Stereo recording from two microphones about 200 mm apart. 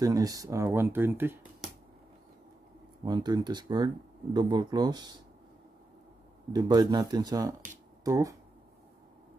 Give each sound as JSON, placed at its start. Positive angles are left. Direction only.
{"t": 0.0, "sound": "speech", "side_deg": -15}
{"t": 3.1, "sound": "speech", "side_deg": -20}
{"t": 6.5, "sound": "speech", "side_deg": -20}